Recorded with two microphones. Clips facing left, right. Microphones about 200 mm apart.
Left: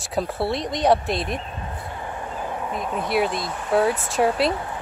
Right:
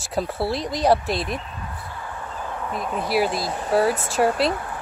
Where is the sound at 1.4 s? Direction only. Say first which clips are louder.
Left 2 dB; 30° left (ahead or behind).